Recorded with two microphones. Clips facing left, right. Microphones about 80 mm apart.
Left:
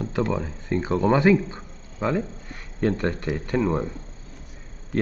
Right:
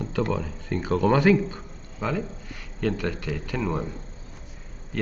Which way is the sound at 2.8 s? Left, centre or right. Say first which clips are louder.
Left 3 dB; left.